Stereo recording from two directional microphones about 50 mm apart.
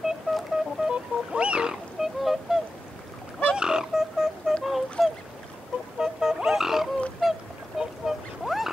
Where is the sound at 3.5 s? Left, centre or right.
Centre.